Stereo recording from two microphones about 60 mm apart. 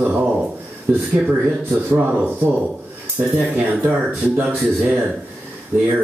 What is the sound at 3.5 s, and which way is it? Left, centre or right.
Speech, right.